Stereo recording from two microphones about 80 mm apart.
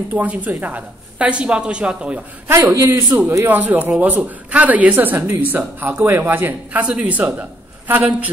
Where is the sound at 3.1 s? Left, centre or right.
Right.